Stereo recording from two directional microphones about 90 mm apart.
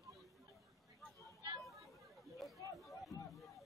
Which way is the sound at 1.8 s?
Centre (ahead or behind).